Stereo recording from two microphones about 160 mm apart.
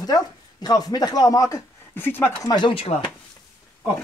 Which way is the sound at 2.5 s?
30° left (ahead or behind).